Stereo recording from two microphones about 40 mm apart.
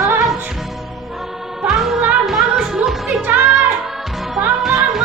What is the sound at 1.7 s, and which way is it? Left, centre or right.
Music, centre.